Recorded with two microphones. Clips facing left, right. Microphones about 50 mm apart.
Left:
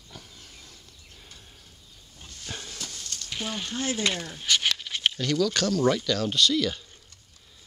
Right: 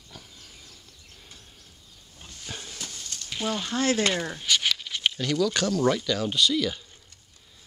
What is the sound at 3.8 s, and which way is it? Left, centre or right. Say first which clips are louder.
Speech: right 4 dB; right.